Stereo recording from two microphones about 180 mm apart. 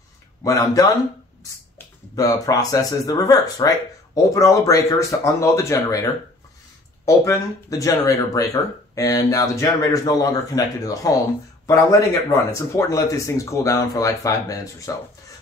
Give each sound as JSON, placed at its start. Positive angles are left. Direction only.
{"t": 0.4, "sound": "speech", "side_deg": 20}
{"t": 2.1, "sound": "speech", "side_deg": 20}
{"t": 7.1, "sound": "speech", "side_deg": 15}
{"t": 12.3, "sound": "speech", "side_deg": 15}